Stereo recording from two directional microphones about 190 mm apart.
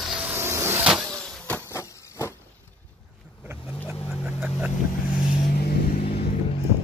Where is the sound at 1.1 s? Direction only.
5° left (ahead or behind).